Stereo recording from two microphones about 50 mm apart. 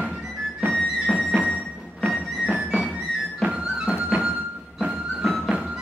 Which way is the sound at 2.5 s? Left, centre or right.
Right.